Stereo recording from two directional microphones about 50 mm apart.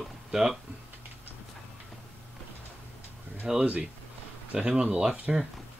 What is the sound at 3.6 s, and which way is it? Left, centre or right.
Speech, centre.